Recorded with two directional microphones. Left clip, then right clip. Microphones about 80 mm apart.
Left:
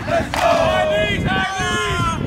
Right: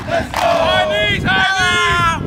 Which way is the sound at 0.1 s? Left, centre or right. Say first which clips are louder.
Right 1 dB; centre.